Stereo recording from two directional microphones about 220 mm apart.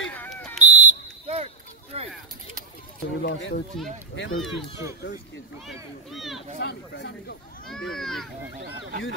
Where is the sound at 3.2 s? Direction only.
55° left (ahead or behind).